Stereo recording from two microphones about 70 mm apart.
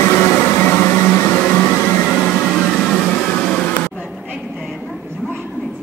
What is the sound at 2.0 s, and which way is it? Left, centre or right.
White noise, centre.